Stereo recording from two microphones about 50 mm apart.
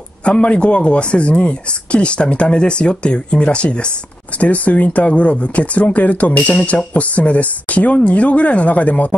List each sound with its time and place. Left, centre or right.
0.2 s speech: left